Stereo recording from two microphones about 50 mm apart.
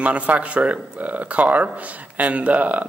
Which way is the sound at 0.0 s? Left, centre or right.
Right.